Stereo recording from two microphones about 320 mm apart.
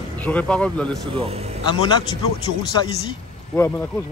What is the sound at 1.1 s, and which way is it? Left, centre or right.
Speech, centre.